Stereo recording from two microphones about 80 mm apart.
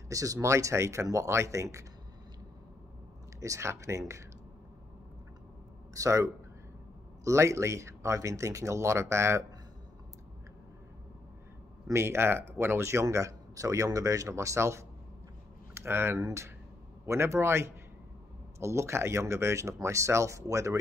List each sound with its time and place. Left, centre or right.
0.1 s speech: right
3.3 s speech: right
5.9 s speech: right
11.9 s speech: right